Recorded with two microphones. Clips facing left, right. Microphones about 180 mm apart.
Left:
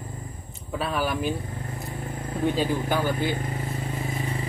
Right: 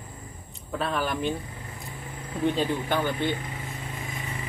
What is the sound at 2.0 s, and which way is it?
Vehicle, 45° left (ahead or behind).